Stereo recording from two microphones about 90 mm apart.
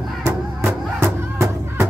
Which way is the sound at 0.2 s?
30° right (ahead or behind).